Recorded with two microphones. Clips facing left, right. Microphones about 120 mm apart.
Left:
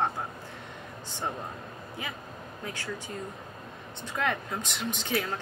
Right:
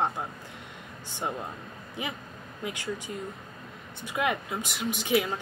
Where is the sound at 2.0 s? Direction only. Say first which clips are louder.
Right 4 dB; 20° right (ahead or behind).